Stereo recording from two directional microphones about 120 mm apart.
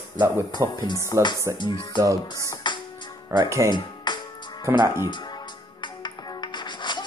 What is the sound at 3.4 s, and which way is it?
Speech, 25° right (ahead or behind).